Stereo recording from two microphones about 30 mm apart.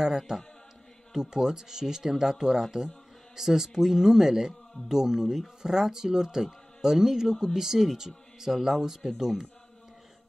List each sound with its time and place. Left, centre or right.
0.3 s speech: right